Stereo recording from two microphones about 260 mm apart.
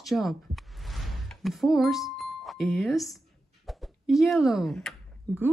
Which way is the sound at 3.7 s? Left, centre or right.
Centre.